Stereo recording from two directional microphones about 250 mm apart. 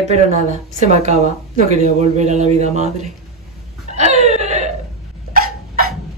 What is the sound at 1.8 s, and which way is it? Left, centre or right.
Speech, right.